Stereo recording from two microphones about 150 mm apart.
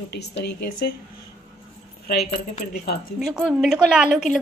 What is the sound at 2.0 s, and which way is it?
Speech, 90° left.